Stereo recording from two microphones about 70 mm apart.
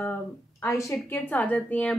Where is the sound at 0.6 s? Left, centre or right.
Left.